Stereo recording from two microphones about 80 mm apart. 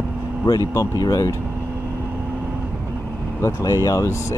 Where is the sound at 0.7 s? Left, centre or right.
Left.